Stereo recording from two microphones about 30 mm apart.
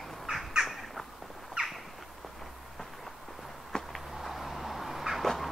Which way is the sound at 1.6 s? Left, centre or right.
Right.